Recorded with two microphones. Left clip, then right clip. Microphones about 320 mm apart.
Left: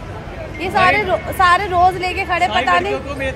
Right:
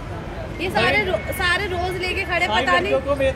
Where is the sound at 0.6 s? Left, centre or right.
Centre.